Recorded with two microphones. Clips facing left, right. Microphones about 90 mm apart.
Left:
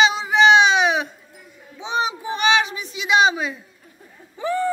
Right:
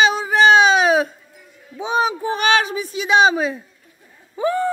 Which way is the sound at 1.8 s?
50° right (ahead or behind).